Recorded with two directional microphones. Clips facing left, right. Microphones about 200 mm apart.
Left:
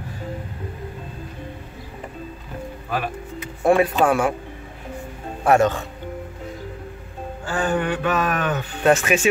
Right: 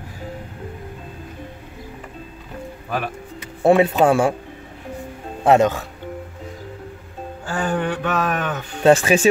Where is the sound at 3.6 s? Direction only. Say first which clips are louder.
Right 3 dB; 25° right (ahead or behind).